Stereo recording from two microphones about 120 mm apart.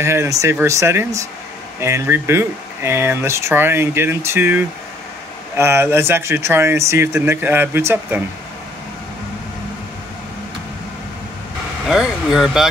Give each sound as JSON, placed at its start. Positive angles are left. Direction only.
{"t": 0.0, "sound": "speech", "side_deg": -25}
{"t": 11.8, "sound": "speech", "side_deg": -5}